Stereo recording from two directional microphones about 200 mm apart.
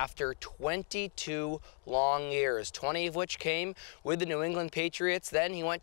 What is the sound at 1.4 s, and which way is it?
Speech, 35° left (ahead or behind).